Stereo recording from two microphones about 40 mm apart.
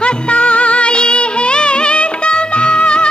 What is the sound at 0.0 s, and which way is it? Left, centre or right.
Music, left.